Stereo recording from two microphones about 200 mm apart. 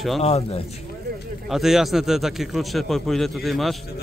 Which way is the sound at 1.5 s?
Centre (ahead or behind).